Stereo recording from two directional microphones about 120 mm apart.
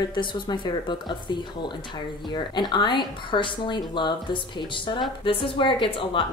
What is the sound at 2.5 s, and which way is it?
Speech, 40° left (ahead or behind).